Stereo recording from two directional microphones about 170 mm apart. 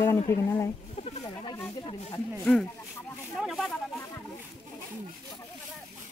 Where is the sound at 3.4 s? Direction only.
Centre (ahead or behind).